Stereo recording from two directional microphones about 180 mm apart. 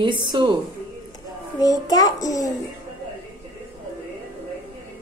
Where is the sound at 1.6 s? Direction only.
20° left (ahead or behind).